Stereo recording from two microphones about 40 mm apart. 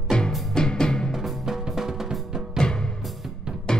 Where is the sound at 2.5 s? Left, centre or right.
Centre.